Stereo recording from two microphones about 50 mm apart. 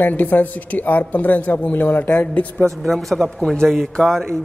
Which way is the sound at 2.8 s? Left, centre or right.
Centre.